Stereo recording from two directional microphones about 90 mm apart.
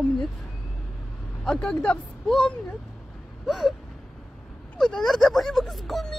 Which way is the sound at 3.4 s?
Centre (ahead or behind).